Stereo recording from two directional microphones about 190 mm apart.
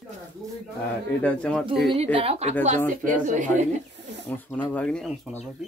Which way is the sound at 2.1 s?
30° right (ahead or behind).